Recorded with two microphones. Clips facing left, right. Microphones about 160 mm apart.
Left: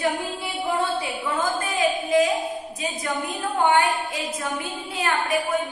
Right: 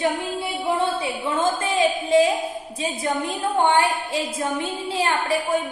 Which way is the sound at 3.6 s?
30° right (ahead or behind).